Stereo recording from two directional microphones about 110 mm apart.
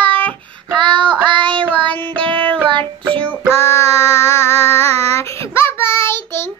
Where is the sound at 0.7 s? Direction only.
45° right (ahead or behind).